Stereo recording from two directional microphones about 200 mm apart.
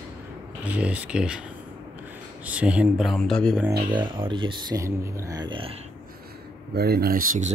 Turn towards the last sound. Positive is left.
turn(degrees=-45)  # may be behind; listen again after turning